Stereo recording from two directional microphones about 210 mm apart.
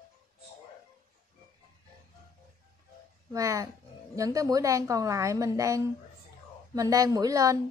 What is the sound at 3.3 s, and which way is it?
A woman's voice, 15° right (ahead or behind).